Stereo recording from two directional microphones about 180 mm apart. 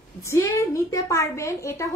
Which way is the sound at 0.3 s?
15° left (ahead or behind).